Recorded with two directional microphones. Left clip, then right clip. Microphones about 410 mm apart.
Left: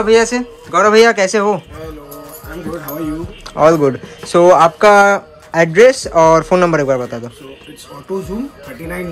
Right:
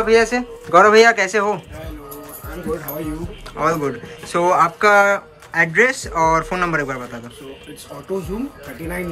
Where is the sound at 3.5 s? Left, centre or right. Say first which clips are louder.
Left 9 dB; centre.